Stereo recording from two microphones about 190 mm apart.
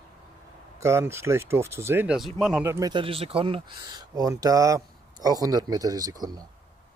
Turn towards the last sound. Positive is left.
turn(degrees=-20)  # may be behind; listen again after turning